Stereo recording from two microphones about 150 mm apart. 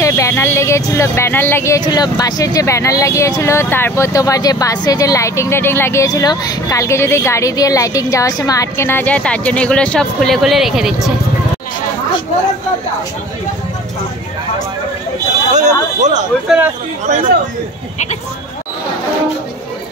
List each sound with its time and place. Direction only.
0.0 s speech: 20° left (ahead or behind); by 11.1 s centre (ahead or behind)
15.5 s speech: 55° right (ahead or behind)
16.4 s speech: 10° right (ahead or behind)